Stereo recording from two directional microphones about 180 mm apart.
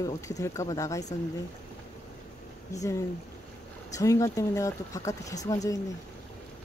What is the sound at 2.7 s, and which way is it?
Speech, 15° left (ahead or behind).